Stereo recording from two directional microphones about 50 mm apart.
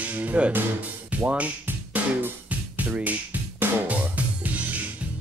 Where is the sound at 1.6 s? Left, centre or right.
Right.